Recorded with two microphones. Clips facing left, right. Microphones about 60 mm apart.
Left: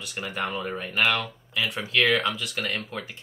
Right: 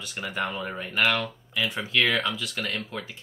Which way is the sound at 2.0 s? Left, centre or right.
Left.